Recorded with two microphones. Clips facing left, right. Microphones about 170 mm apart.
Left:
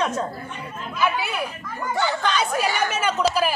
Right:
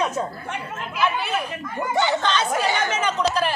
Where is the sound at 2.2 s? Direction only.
10° left (ahead or behind).